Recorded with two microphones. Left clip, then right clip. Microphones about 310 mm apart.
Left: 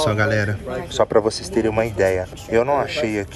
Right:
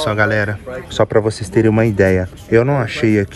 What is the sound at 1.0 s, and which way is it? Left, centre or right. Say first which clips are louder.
Speech: right 2 dB; right.